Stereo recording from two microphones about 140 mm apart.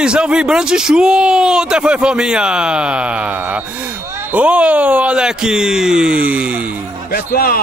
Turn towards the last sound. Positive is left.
turn(degrees=90)